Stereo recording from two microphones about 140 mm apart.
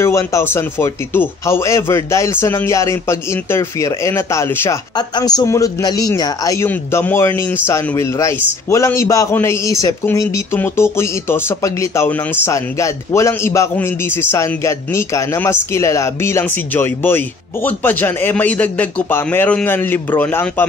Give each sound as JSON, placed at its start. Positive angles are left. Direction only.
{"t": 0.0, "sound": "a man's voice", "side_deg": 20}
{"t": 4.9, "sound": "a man's voice", "side_deg": 30}